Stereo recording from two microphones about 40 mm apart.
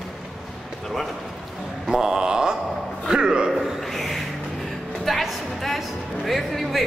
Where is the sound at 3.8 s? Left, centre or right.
Centre.